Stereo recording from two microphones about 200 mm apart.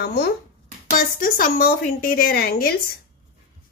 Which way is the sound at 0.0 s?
55° left (ahead or behind).